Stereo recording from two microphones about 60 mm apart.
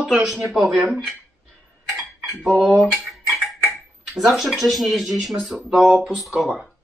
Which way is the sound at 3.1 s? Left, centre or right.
Centre.